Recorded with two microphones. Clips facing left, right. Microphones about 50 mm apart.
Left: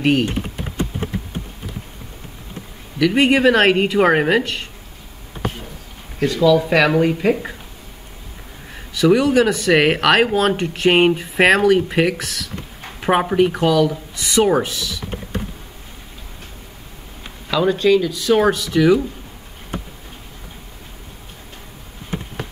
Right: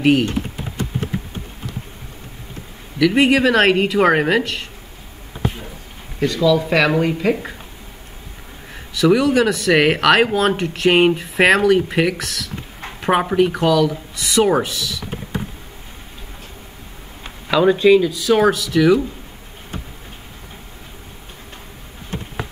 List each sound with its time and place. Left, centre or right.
3.0 s speech: centre
6.2 s speech: centre
8.9 s speech: centre
17.5 s speech: centre